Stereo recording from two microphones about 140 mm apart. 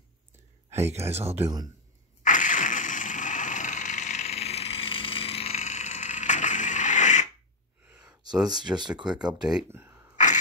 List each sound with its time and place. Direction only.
0.7 s speech: 20° right (ahead or behind)
2.2 s a sound: 65° left (ahead or behind)
7.8 s a sound: 10° right (ahead or behind)
8.5 s speech: 30° right (ahead or behind)
8.9 s speech: 5° right (ahead or behind)
9.7 s speech: 15° right (ahead or behind)
10.1 s scrape: 60° left (ahead or behind)